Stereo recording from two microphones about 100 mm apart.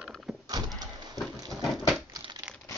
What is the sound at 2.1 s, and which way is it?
Crumpling, 40° right (ahead or behind).